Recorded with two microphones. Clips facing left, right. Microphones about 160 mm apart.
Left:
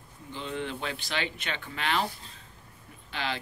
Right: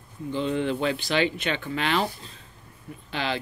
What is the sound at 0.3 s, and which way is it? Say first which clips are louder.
Speech: right 9 dB; 90° right.